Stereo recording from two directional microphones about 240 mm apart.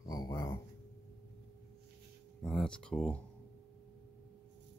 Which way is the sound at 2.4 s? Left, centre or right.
Centre.